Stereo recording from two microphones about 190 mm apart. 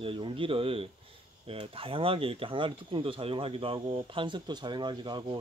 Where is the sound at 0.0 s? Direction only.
30° right (ahead or behind).